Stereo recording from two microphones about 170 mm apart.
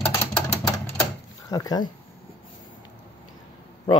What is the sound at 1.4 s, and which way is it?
Speech, 20° left (ahead or behind).